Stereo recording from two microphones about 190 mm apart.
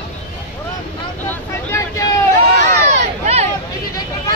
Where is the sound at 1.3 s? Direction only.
15° left (ahead or behind).